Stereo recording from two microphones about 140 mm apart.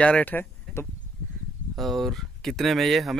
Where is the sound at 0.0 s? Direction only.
10° left (ahead or behind).